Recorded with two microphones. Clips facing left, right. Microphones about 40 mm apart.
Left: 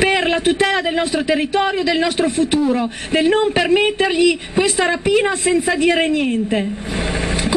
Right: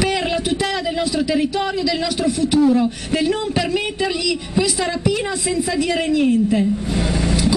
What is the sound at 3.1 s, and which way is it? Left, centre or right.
A man's voice, left.